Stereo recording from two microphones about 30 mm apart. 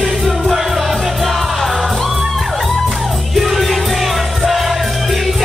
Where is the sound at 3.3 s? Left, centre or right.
Centre.